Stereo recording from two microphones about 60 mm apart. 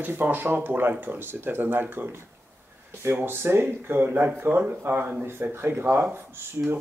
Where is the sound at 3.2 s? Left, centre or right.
Right.